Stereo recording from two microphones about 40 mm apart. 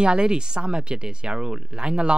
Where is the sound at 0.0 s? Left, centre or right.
Right.